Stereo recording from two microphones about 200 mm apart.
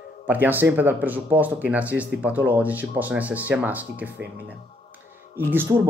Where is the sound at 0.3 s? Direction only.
10° right (ahead or behind).